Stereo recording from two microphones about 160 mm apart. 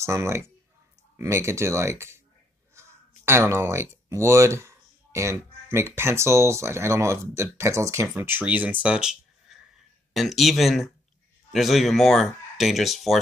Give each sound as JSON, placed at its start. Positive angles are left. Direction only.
{"t": 0.0, "sound": "speech", "side_deg": -15}